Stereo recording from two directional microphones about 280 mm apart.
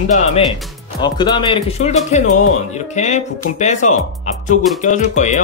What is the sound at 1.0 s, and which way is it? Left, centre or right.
Speech, centre.